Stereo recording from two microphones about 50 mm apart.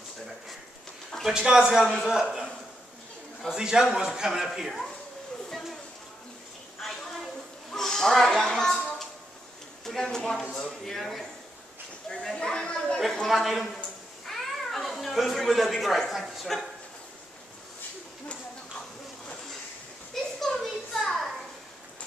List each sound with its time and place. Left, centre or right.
1.2 s a man's voice: centre
3.4 s a man's voice: centre
5.5 s a sound: centre
7.7 s a sound: centre
9.8 s speech: centre
12.1 s speech: centre
13.0 s speech: centre
14.2 s cat: centre
20.3 s a sound: centre